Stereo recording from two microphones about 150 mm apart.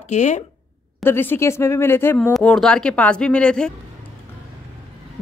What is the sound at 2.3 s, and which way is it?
Speech, 5° left (ahead or behind).